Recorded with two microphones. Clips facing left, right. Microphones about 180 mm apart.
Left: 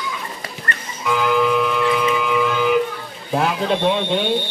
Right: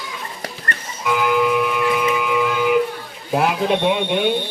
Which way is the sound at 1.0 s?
15° right (ahead or behind).